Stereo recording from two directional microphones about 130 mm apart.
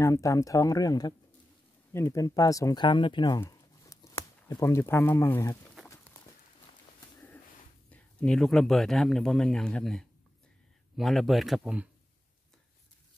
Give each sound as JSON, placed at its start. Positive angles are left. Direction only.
{"t": 0.0, "sound": "speech", "side_deg": 25}
{"t": 3.3, "sound": "a sound", "side_deg": 25}
{"t": 7.9, "sound": "a man's voice", "side_deg": 5}